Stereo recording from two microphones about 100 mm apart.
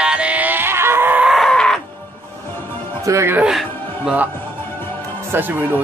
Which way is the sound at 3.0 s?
30° right (ahead or behind).